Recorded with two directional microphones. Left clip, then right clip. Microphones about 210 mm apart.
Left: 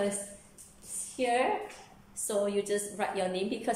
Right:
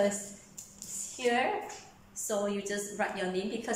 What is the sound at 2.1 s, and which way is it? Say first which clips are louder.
A woman's voice: left 2 dB; 15° left (ahead or behind).